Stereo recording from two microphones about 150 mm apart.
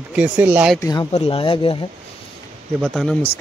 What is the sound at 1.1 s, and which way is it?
Speech, 40° left (ahead or behind).